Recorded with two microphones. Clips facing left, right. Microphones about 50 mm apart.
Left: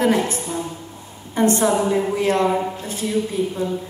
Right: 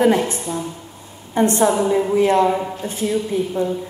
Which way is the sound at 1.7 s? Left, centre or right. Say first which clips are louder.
Right 2 dB; centre.